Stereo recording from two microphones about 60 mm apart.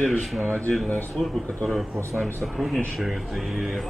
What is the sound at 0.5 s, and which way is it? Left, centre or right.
Speech, left.